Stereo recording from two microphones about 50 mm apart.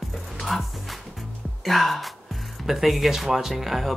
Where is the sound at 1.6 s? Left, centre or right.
Centre.